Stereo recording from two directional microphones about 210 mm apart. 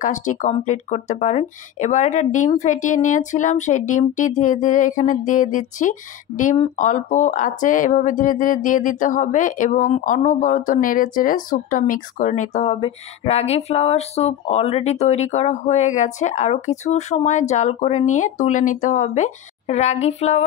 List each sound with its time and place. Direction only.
0.0 s speech: 35° left (ahead or behind)